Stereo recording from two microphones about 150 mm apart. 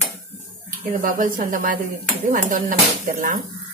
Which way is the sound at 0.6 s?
65° right (ahead or behind).